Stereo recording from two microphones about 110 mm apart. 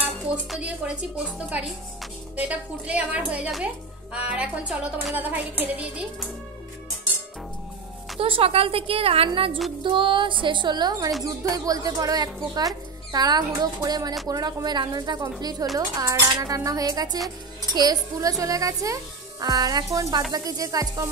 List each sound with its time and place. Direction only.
0.5 s a woman's voice: 10° right (ahead or behind)
8.2 s a woman's voice: 60° right (ahead or behind); by 21.1 s 30° right (ahead or behind)